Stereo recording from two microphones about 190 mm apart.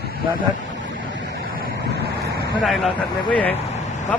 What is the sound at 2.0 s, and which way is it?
Vehicle, 60° right (ahead or behind).